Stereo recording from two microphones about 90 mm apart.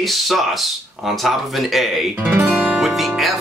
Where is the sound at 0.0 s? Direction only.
Centre (ahead or behind).